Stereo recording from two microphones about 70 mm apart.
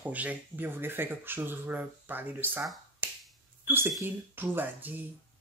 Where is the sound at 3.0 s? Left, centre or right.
Right.